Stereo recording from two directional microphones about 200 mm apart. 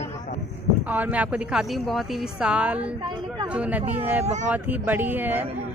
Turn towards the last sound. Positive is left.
turn(degrees=-10)  # may be behind; listen again after turning